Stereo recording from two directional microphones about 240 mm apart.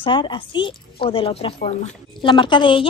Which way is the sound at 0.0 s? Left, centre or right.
Centre.